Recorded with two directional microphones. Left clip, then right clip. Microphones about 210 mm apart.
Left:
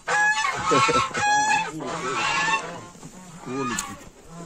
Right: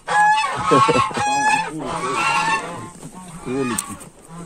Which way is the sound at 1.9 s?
50° right (ahead or behind).